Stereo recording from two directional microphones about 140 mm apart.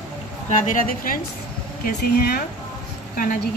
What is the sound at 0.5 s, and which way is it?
Speech, 70° left (ahead or behind).